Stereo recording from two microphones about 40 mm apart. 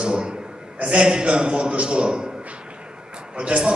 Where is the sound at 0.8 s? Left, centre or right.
Right.